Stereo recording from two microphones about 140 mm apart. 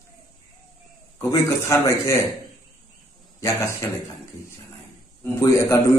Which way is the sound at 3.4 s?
20° left (ahead or behind).